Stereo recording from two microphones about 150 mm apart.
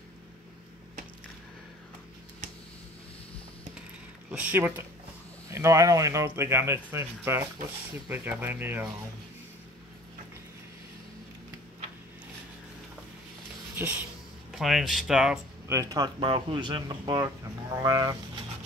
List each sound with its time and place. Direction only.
4.3 s speech: 10° right (ahead or behind)
13.7 s speech: 10° right (ahead or behind)
14.5 s speech: centre (ahead or behind)
15.7 s speech: 20° right (ahead or behind)